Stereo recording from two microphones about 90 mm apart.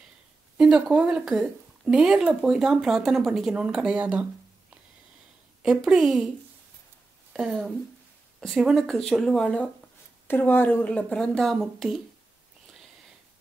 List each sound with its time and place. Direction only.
0.6 s speech: 5° right (ahead or behind)
5.9 s speech: 5° right (ahead or behind)
7.3 s speech: 5° left (ahead or behind)
10.2 s a woman's voice: 25° left (ahead or behind); by 11.5 s 5° left (ahead or behind)
11.5 s speech: 5° right (ahead or behind)